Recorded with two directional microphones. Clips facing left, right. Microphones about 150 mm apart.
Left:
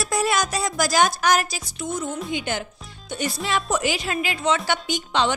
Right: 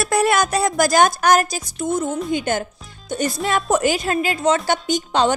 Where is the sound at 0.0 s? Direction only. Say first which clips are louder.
Right 5 dB; 60° right (ahead or behind).